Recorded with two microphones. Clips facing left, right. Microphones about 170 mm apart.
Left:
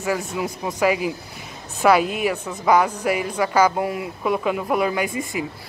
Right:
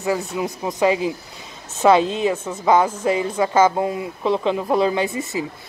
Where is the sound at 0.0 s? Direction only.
20° right (ahead or behind).